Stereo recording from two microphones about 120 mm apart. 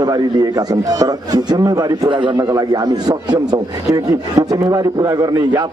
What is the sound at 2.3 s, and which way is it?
A man's voice, 30° right (ahead or behind).